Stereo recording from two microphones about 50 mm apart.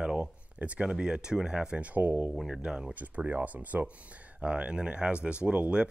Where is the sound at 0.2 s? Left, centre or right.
Right.